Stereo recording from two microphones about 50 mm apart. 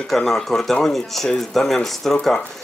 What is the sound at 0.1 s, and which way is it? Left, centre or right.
Speech, centre.